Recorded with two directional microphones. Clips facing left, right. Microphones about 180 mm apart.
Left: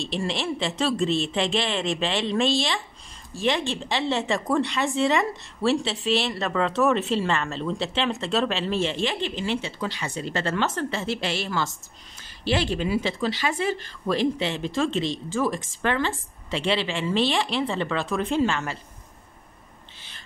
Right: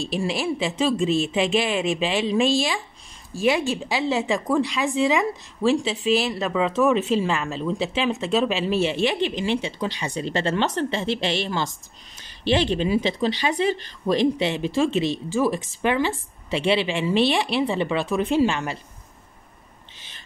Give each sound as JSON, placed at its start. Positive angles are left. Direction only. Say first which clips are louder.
{"t": 0.0, "sound": "a woman's voice", "louder": "right 3 dB", "side_deg": -5}